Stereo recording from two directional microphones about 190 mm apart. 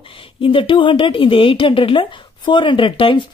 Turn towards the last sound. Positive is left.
turn(degrees=25)  # may be behind; listen again after turning